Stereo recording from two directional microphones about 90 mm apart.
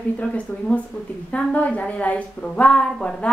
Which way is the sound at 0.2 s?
15° left (ahead or behind).